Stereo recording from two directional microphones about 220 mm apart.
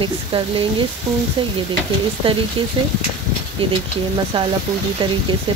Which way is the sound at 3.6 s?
25° right (ahead or behind).